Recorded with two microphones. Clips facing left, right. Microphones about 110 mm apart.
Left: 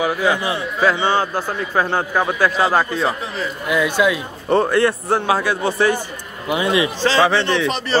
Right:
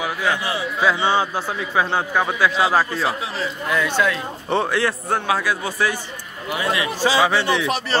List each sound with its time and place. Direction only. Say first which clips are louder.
0.0 s speech: left 4 dB; 10° left (ahead or behind)
0.5 s a man's voice: left 2 dB; centre (ahead or behind)
3.7 s speech: left 4 dB; 15° left (ahead or behind)
4.5 s a man's voice: left 5 dB; centre (ahead or behind)
6.5 s a man's voice: left 5 dB; 20° left (ahead or behind)
7.0 s a man's voice: even; 10° right (ahead or behind)